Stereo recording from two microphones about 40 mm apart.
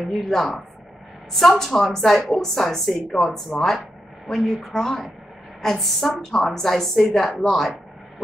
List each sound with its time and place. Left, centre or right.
0.0 s a woman's voice: centre
1.6 s a woman's voice: centre
3.5 s speech: centre
4.3 s a woman's voice: centre